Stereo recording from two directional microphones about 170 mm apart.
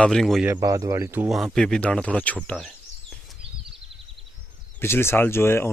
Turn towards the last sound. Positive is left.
turn(degrees=15)  # may be behind; listen again after turning